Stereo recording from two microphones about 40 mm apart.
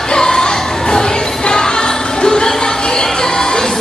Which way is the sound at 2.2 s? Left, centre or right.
Centre.